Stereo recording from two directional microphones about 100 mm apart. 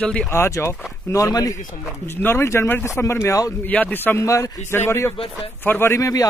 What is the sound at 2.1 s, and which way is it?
Speech, 20° left (ahead or behind).